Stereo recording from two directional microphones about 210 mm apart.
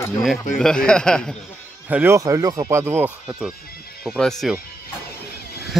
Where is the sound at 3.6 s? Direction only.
45° left (ahead or behind).